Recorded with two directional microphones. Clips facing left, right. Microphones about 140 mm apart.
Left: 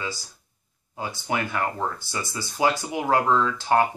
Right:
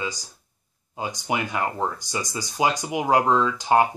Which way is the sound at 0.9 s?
15° right (ahead or behind).